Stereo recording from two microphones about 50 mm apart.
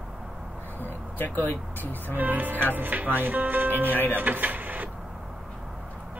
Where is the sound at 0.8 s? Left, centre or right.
Left.